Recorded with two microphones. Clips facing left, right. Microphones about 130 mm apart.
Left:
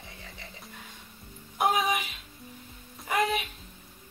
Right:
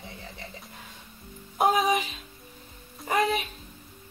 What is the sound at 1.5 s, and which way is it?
Speech, 35° right (ahead or behind).